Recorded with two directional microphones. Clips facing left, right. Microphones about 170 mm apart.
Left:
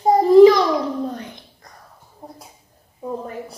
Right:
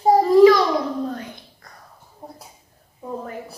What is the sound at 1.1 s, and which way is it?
Dog, 20° left (ahead or behind).